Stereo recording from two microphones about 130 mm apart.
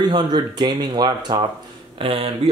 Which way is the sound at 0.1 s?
35° right (ahead or behind).